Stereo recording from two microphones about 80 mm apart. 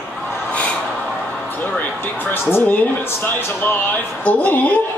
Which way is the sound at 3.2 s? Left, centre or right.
Left.